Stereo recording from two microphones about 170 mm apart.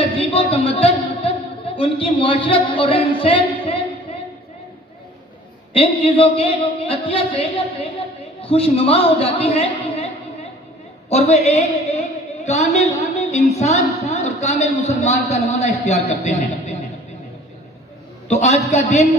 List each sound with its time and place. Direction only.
0.0 s a sound: 35° left (ahead or behind)
1.8 s a woman's voice: 30° left (ahead or behind)
5.7 s a woman's voice: 35° left (ahead or behind)
11.4 s a sound: 40° left (ahead or behind)
13.0 s a woman's voice: 40° left (ahead or behind)
18.3 s a woman's voice: 40° left (ahead or behind)